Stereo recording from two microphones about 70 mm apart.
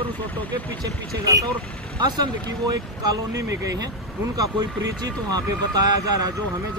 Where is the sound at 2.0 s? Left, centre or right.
Right.